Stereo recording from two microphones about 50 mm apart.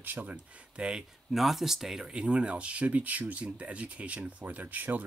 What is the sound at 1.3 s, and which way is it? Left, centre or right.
Speech, centre.